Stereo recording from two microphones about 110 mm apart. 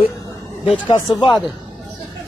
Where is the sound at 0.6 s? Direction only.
50° left (ahead or behind).